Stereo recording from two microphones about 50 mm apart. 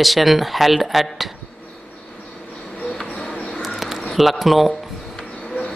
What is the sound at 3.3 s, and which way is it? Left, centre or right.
Bird, left.